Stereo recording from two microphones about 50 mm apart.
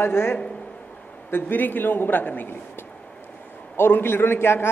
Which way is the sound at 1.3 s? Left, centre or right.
Left.